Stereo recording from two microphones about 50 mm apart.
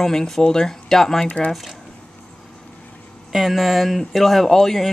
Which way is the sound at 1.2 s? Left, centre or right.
Left.